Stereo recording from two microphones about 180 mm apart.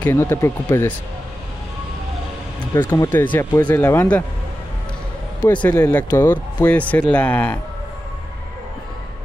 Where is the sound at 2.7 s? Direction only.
15° left (ahead or behind).